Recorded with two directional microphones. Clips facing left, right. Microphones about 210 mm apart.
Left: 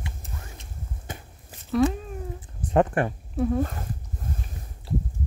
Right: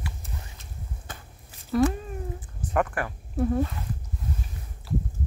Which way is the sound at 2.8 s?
25° left (ahead or behind).